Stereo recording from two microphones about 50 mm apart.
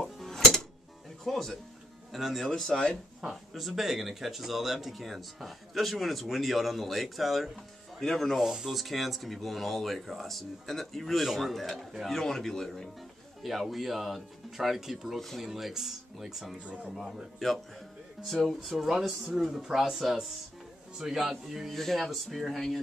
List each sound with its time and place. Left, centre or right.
0.0 s music: centre
1.2 s speech: centre
3.2 s speech: centre
8.4 s speech: centre
13.4 s speech: centre
16.6 s speech: right
17.1 s speech: centre